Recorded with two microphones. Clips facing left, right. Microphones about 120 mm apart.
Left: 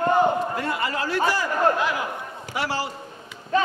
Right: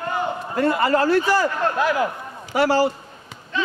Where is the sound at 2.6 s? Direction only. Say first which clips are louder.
Right 9 dB; 50° right (ahead or behind).